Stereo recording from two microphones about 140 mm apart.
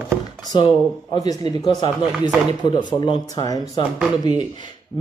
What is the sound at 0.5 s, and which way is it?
Speech, 35° left (ahead or behind).